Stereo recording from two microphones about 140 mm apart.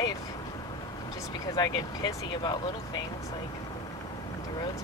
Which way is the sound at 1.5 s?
30° left (ahead or behind).